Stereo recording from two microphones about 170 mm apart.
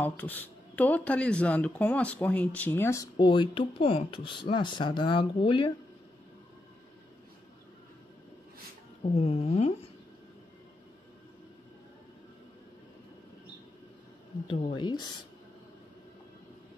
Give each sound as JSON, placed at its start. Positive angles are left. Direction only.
{"t": 0.0, "sound": "speech", "side_deg": 10}
{"t": 9.1, "sound": "speech", "side_deg": 35}
{"t": 14.5, "sound": "speech", "side_deg": 30}